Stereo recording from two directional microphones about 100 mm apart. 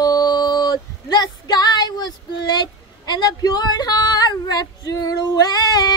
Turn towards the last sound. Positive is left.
turn(degrees=45)  # may be behind; listen again after turning